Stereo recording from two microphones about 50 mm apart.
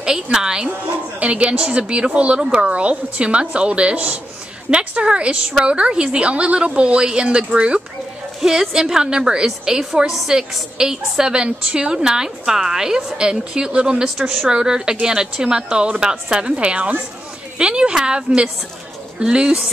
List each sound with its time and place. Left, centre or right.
0.0 s a woman's voice: centre
1.2 s a woman's voice: right
8.4 s a woman's voice: centre